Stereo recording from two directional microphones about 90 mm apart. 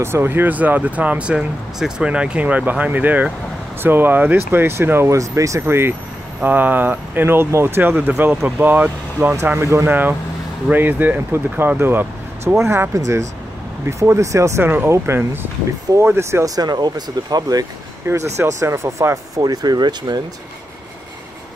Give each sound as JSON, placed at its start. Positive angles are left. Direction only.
{"t": 0.0, "sound": "speech", "side_deg": -25}
{"t": 9.4, "sound": "speech", "side_deg": -30}
{"t": 9.8, "sound": "speech", "side_deg": -20}
{"t": 12.5, "sound": "speech", "side_deg": -35}
{"t": 14.6, "sound": "speech", "side_deg": -25}
{"t": 16.5, "sound": "speech", "side_deg": -45}
{"t": 18.0, "sound": "speech", "side_deg": -30}